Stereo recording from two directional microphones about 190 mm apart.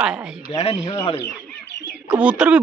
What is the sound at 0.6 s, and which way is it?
Speech, 30° left (ahead or behind).